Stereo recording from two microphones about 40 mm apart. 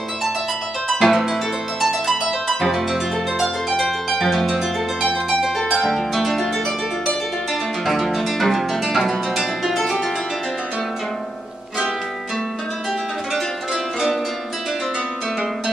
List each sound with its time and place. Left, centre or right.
0.9 s harp: centre
3.7 s harp: centre
7.8 s music: centre